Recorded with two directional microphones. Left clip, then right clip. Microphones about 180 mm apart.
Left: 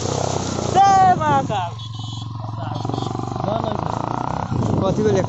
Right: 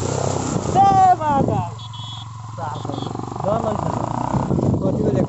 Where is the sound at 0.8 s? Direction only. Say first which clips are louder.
Even; 10° right (ahead or behind).